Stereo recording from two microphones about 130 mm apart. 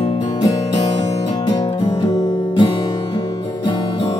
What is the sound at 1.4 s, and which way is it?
Music, 30° left (ahead or behind).